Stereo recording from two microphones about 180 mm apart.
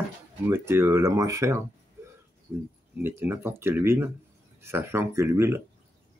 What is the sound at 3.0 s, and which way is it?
Speech, 10° right (ahead or behind).